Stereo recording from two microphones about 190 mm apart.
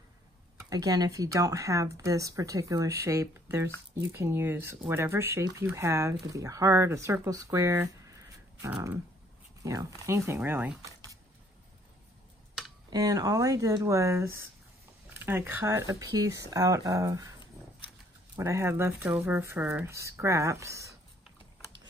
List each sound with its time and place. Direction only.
0.7 s speech: 20° right (ahead or behind)
12.9 s speech: 20° right (ahead or behind)
17.6 s dog: 15° left (ahead or behind)
18.3 s speech: 15° right (ahead or behind)